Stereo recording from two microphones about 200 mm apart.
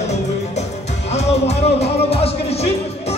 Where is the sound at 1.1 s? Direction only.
30° left (ahead or behind).